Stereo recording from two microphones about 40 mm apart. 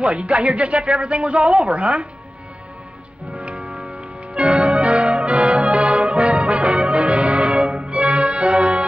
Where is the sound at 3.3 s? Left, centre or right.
Right.